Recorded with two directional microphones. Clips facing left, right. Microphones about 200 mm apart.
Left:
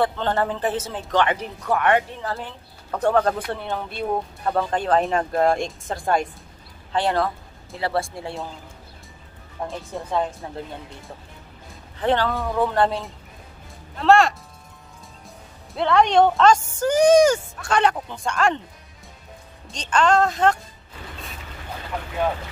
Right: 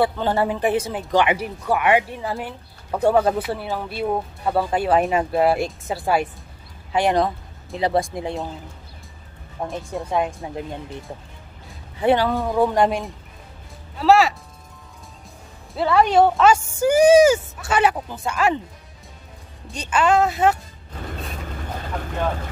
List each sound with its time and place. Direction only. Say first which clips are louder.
0.0 s speech: right 2 dB; 10° right (ahead or behind)
10.1 s speech: right 1 dB; 15° right (ahead or behind)
12.0 s speech: right 3 dB; 10° right (ahead or behind)
15.7 s speech: right 1 dB; 5° right (ahead or behind)
19.7 s speech: right 1 dB; 5° right (ahead or behind)